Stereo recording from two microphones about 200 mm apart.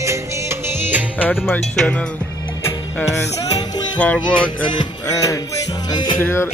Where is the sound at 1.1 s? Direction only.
10° left (ahead or behind).